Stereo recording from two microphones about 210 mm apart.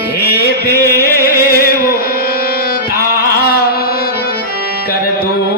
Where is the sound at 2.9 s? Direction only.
45° left (ahead or behind).